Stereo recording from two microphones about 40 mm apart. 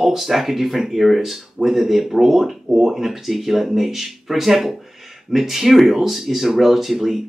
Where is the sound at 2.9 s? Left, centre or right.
Centre.